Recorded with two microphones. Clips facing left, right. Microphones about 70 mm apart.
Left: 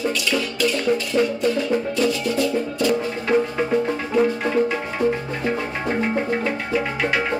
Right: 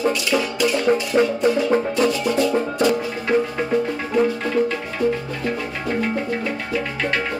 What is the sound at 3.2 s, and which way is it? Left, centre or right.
Music, centre.